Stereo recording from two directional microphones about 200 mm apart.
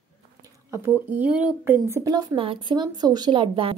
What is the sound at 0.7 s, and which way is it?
Speech, 10° right (ahead or behind).